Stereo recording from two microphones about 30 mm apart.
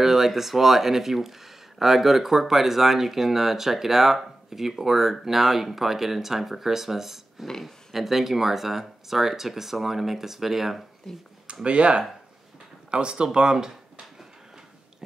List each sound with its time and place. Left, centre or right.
0.0 s speech: centre
11.6 s speech: right